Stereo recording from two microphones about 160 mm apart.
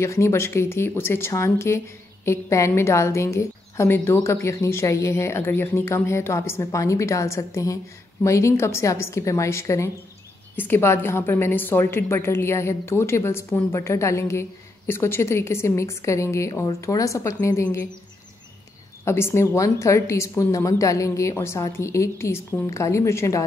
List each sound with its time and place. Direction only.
0.0 s a woman's voice: 15° left (ahead or behind)
19.0 s speech: 15° left (ahead or behind)